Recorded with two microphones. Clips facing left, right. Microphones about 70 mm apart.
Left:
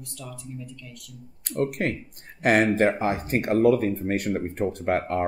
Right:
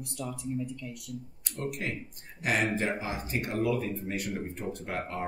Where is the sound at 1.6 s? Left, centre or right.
Left.